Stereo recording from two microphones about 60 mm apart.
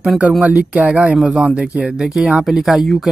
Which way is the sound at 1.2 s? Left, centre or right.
Centre.